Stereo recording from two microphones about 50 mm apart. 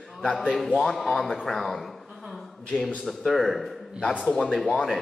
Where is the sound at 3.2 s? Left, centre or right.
Centre.